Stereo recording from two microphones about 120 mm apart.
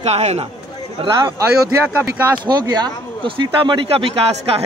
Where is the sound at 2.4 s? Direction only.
35° right (ahead or behind).